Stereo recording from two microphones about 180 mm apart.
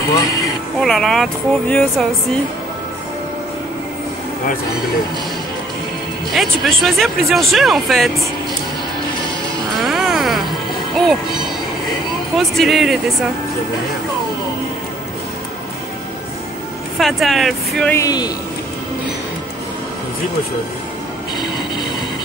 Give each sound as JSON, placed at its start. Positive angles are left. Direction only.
{"t": 0.1, "sound": "speech", "side_deg": 20}
{"t": 0.7, "sound": "speech", "side_deg": 5}
{"t": 6.3, "sound": "speech", "side_deg": 0}
{"t": 9.8, "sound": "music", "side_deg": 0}
{"t": 12.4, "sound": "speech", "side_deg": 0}
{"t": 17.0, "sound": "speech", "side_deg": 0}
{"t": 17.9, "sound": "speech", "side_deg": 20}